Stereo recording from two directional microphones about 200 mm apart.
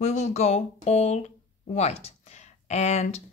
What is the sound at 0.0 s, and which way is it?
Speech, 35° left (ahead or behind).